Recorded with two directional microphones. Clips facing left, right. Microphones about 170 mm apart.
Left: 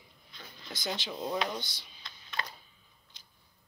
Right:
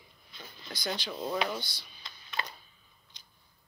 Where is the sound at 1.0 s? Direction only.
20° left (ahead or behind).